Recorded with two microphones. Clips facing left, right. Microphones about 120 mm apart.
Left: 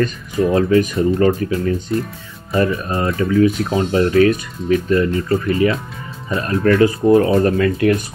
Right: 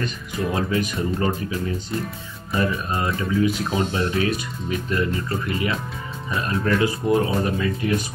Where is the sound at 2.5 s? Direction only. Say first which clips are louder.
Left 6 dB; 40° left (ahead or behind).